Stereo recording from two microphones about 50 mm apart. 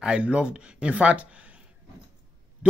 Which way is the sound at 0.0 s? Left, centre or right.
Right.